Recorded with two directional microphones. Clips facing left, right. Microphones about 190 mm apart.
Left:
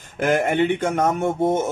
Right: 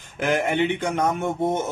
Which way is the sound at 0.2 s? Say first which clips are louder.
Left 3 dB; 45° left (ahead or behind).